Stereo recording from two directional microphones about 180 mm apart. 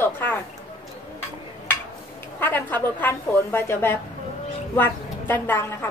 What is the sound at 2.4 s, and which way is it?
A woman's voice, 10° left (ahead or behind).